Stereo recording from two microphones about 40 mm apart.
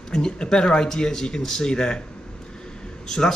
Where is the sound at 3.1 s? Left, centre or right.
Centre.